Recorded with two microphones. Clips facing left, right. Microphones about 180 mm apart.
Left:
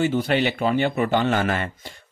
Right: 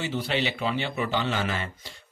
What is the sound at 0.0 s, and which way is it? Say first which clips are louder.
Speech: left 7 dB; 50° left (ahead or behind).